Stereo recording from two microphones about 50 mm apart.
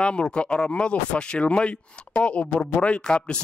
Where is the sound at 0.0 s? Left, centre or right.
Centre.